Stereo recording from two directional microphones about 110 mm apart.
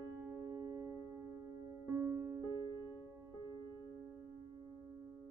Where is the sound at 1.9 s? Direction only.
20° right (ahead or behind).